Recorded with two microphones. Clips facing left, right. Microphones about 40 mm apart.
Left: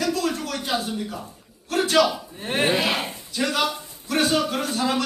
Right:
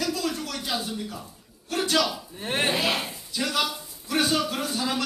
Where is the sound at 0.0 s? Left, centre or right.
Centre.